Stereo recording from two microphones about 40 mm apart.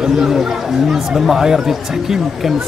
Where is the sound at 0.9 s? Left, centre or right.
Centre.